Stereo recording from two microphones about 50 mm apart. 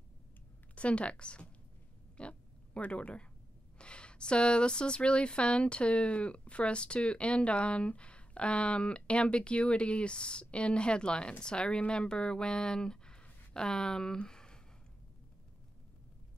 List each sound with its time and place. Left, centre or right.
0.7 s speech: left
2.1 s oink: left
3.7 s speech: left